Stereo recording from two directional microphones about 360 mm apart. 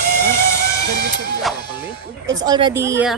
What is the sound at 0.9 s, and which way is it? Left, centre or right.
Goat, right.